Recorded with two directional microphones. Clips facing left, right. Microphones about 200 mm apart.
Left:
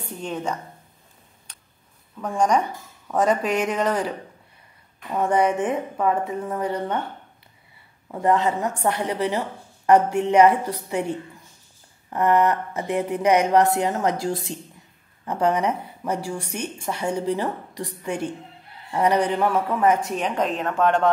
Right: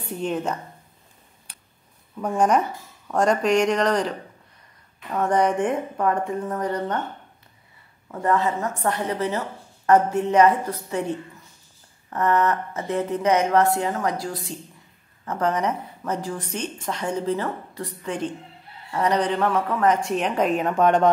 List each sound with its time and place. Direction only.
0.2 s speech: 5° right (ahead or behind)
1.5 s a sound: 10° right (ahead or behind)
2.1 s speech: 10° right (ahead or behind)
5.1 s a woman's voice: 10° left (ahead or behind)
8.1 s a woman's voice: 15° left (ahead or behind)
15.2 s a woman's voice: 10° left (ahead or behind); by 21.1 s 15° right (ahead or behind)